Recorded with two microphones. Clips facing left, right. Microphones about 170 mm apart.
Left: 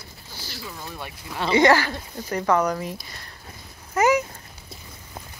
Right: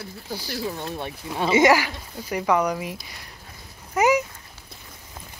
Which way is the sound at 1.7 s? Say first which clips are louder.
Even; 5° right (ahead or behind).